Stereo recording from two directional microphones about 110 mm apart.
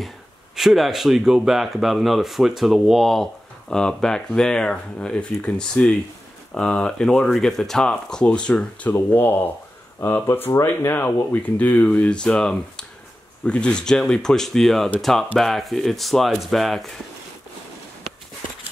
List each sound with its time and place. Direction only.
0.6 s speech: centre (ahead or behind)